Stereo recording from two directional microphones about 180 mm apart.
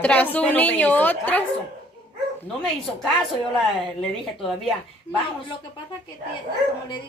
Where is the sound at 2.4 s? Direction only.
5° left (ahead or behind).